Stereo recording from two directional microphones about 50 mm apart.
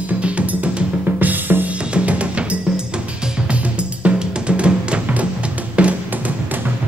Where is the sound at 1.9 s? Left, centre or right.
Right.